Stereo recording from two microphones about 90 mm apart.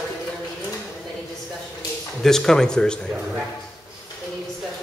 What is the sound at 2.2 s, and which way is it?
Speech, 5° left (ahead or behind).